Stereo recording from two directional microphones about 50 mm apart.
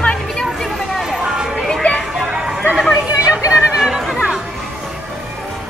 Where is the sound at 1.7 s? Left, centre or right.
Centre.